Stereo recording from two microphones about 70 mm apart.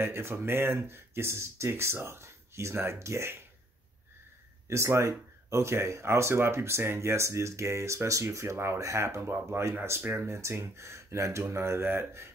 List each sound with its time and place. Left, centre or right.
0.0 s speech: right
4.6 s speech: right